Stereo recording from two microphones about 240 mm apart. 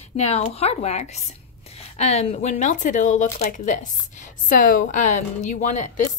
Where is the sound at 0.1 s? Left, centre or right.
Left.